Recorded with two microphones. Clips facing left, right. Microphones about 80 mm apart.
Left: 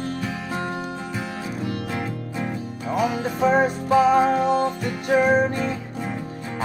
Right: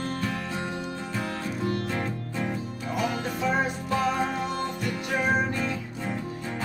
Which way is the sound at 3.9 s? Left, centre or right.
Centre.